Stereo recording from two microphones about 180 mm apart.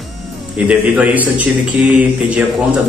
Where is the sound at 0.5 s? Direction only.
5° right (ahead or behind).